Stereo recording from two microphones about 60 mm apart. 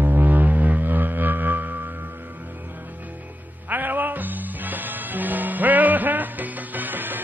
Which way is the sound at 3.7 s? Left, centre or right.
Right.